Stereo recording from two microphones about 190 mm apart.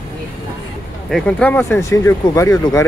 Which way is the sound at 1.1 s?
5° left (ahead or behind).